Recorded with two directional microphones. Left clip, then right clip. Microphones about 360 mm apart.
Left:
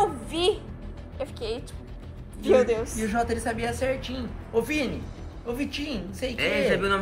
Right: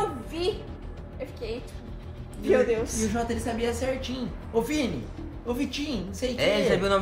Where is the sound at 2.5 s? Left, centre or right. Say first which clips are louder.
Left 2 dB; centre.